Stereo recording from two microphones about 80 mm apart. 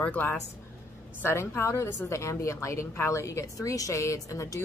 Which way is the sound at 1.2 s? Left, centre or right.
Left.